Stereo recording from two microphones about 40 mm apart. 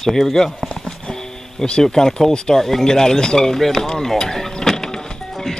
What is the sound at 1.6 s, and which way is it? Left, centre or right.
Speech, centre.